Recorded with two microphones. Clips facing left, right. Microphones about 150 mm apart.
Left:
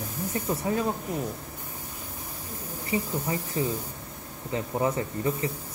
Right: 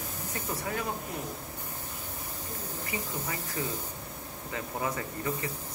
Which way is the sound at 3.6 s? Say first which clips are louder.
Left 6 dB; 25° left (ahead or behind).